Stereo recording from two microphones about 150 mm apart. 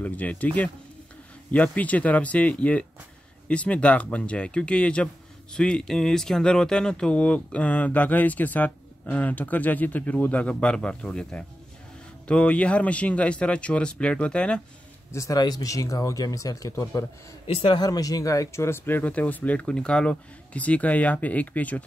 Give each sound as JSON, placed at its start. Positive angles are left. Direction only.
{"t": 0.0, "sound": "speech", "side_deg": 10}
{"t": 15.0, "sound": "speech", "side_deg": 20}
{"t": 17.5, "sound": "speech", "side_deg": 35}